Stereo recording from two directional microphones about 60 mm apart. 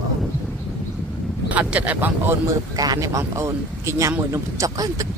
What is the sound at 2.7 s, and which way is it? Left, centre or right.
Speech, right.